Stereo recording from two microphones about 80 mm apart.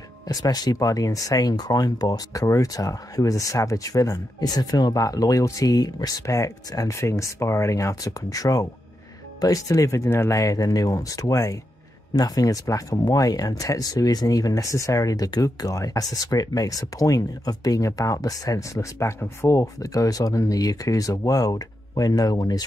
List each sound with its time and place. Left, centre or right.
0.3 s speech: left